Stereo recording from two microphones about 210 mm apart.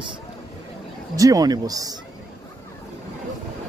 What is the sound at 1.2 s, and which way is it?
Speech, 15° right (ahead or behind).